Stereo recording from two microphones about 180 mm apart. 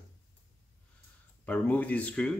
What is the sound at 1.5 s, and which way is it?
Speech, 10° left (ahead or behind).